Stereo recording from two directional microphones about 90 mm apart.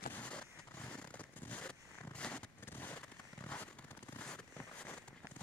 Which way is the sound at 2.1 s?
10° left (ahead or behind).